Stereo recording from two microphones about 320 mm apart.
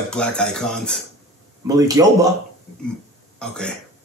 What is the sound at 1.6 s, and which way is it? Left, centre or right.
Speech, centre.